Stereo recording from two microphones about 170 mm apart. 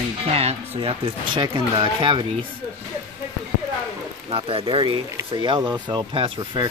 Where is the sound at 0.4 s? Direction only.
35° right (ahead or behind).